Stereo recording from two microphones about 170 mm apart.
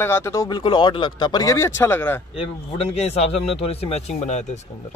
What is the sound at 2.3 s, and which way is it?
A man's voice, 35° left (ahead or behind).